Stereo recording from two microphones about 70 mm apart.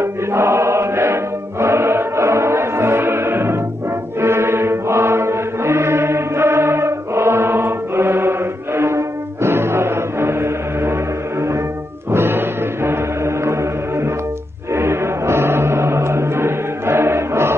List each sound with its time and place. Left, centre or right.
0.0 s chant: right
4.2 s mantra: right
12.1 s music: right